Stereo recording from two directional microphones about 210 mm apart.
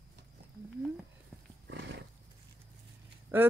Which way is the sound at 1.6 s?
60° right (ahead or behind).